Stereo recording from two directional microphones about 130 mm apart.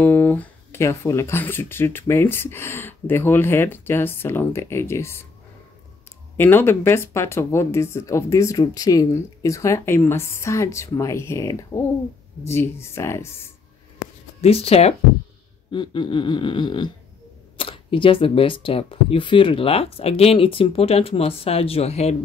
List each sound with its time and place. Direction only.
0.0 s speech: 15° left (ahead or behind)
6.3 s speech: 15° left (ahead or behind)
14.4 s speech: 50° left (ahead or behind)
15.7 s a sound: 35° left (ahead or behind)
17.6 s speech: 40° left (ahead or behind)